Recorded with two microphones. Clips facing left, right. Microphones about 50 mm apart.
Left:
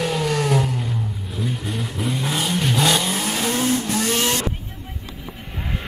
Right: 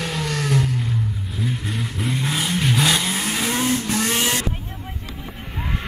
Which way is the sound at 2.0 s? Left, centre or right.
Centre.